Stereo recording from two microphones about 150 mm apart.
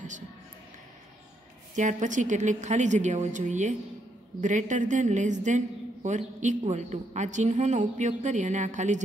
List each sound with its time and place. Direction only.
1.8 s a woman's voice: 55° right (ahead or behind)